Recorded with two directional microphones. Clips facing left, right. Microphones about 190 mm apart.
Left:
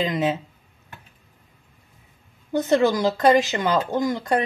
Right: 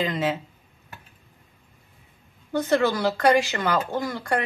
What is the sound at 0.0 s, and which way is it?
Speech, 15° left (ahead or behind).